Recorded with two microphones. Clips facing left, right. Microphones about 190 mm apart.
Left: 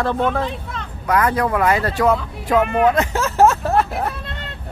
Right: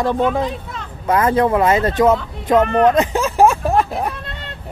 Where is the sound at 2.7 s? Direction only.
5° left (ahead or behind).